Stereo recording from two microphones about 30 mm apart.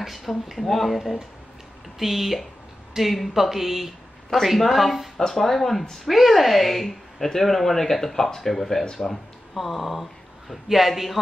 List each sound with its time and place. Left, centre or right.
0.0 s a woman's voice: centre
5.3 s speech: centre
6.0 s speech: centre
9.6 s speech: centre